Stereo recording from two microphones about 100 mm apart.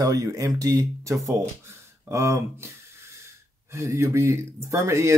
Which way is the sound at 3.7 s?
30° right (ahead or behind).